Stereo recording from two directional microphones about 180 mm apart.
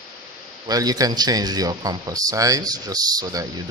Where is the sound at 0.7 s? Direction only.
20° right (ahead or behind).